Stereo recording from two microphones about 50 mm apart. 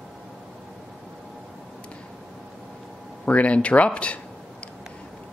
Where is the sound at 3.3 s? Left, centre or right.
Left.